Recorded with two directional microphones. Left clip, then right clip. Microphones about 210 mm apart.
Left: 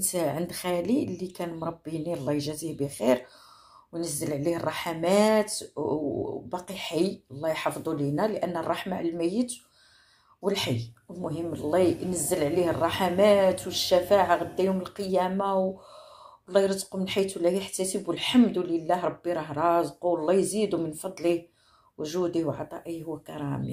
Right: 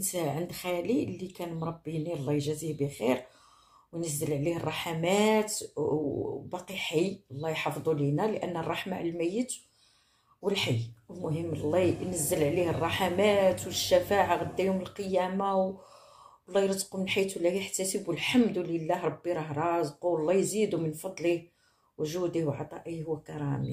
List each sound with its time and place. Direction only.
0.0 s speech: 25° left (ahead or behind)
17.0 s speech: 20° left (ahead or behind)